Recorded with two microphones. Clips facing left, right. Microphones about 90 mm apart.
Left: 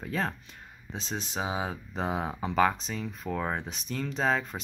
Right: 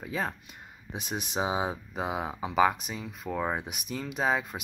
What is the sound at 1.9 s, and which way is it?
Speech, 5° right (ahead or behind).